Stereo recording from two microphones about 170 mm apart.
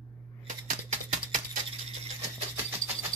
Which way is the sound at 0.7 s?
50° right (ahead or behind).